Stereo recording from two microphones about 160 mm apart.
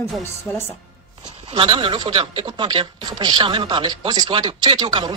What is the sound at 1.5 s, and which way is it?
Speech, 35° right (ahead or behind).